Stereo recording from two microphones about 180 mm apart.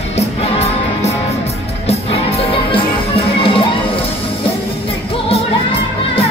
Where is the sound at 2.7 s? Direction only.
30° left (ahead or behind).